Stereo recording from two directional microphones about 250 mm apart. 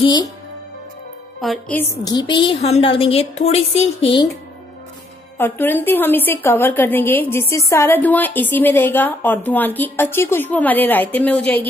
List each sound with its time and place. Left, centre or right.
0.0 s a woman's voice: centre
1.4 s a woman's voice: centre; by 4.3 s left
5.4 s a woman's voice: centre